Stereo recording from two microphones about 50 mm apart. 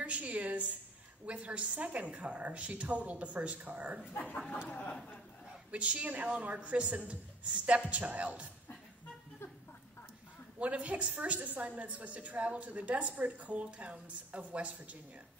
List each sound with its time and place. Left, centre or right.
0.0 s a sound: right
1.2 s a woman's voice: right
5.7 s a woman's voice: right
10.6 s a woman's voice: right